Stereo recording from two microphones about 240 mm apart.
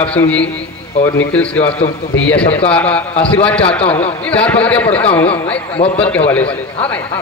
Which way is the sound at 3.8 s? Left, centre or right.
Left.